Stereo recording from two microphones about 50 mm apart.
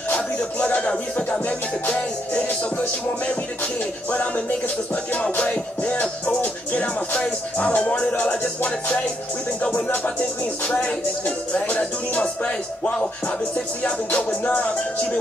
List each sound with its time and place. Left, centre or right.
0.7 s music: left
9.6 s a sound: left
10.7 s speech: left